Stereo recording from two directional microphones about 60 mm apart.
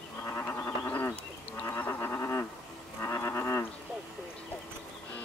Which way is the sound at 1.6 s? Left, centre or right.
Left.